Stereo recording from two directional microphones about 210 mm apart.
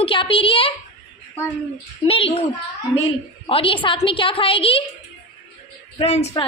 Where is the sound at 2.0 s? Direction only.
25° left (ahead or behind).